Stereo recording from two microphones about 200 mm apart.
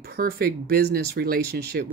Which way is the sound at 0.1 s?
50° right (ahead or behind).